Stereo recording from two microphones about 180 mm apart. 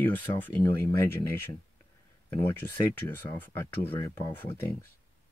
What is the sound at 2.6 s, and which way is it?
Speech, 15° left (ahead or behind).